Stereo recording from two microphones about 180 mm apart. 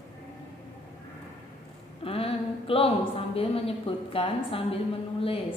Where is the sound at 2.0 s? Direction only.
30° left (ahead or behind).